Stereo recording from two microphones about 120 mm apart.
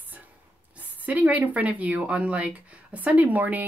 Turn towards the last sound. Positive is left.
turn(degrees=-15)  # may be behind; listen again after turning